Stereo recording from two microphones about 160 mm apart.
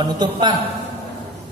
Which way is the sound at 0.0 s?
25° right (ahead or behind).